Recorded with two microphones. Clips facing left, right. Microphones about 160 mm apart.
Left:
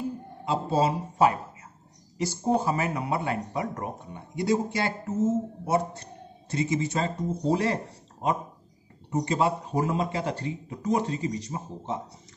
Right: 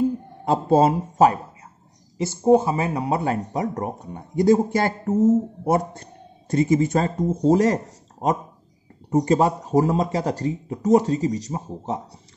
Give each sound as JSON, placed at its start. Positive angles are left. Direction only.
{"t": 0.5, "sound": "speech", "side_deg": -50}
{"t": 2.1, "sound": "a man's voice", "side_deg": -25}